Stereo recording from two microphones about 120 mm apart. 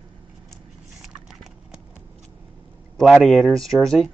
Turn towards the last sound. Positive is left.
turn(degrees=5)  # may be behind; listen again after turning